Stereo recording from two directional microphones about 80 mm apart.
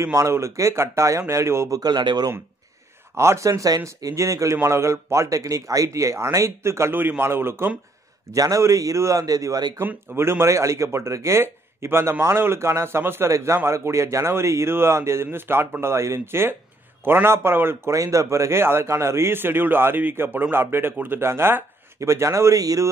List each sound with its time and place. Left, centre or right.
0.0 s speech: right
1.8 s speech: right
3.2 s speech: right
8.3 s a man's voice: right
9.8 s speech: right
17.9 s speech: right